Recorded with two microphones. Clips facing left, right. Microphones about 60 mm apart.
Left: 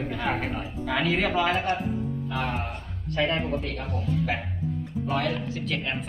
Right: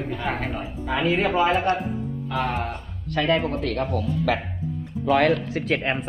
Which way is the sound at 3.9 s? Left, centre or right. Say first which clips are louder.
Right 4 dB; right.